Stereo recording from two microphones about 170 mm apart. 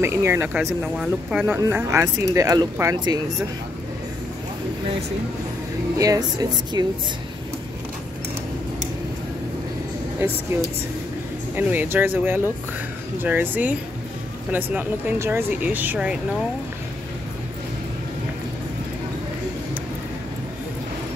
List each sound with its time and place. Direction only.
0.0 s speech: 15° right (ahead or behind)
0.6 s speech: centre (ahead or behind); by 3.2 s 20° right (ahead or behind)
5.9 s speech: 20° right (ahead or behind)
10.5 s speech: 15° right (ahead or behind)